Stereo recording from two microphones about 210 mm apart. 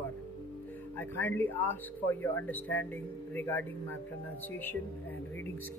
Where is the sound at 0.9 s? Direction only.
10° left (ahead or behind).